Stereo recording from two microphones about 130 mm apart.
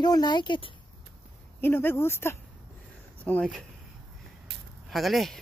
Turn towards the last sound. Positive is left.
turn(degrees=0)  # may be behind; listen again after turning